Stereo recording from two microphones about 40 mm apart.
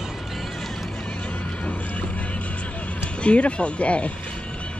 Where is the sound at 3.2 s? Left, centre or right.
Left.